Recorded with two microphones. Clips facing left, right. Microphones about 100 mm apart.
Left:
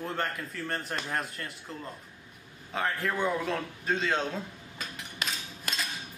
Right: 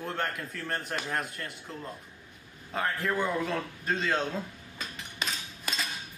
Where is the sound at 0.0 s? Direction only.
Centre (ahead or behind).